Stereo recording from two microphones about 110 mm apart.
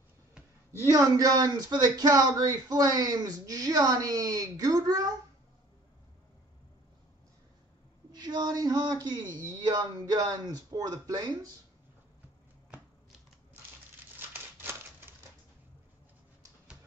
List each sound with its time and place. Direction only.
0.7 s speech: 30° right (ahead or behind)
8.1 s speech: 40° right (ahead or behind)
14.3 s typewriter: 20° right (ahead or behind)